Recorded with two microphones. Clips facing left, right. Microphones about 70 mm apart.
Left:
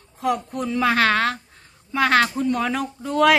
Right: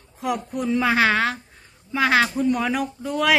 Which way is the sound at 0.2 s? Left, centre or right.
Centre.